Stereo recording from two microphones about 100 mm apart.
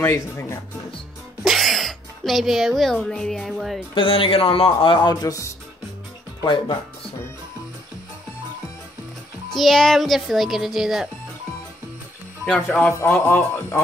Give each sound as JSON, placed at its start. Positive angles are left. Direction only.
{"t": 0.0, "sound": "speech", "side_deg": 25}
{"t": 1.4, "sound": "speech", "side_deg": 0}
{"t": 3.9, "sound": "a man's voice", "side_deg": 60}
{"t": 5.1, "sound": "speech", "side_deg": 30}
{"t": 9.5, "sound": "a child's voice", "side_deg": 5}
{"t": 12.4, "sound": "a man's voice", "side_deg": 10}